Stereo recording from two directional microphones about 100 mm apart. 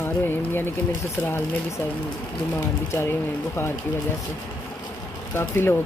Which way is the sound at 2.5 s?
25° left (ahead or behind).